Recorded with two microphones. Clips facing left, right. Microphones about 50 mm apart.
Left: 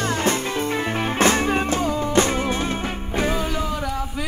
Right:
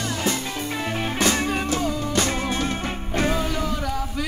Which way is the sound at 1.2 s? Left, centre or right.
Left.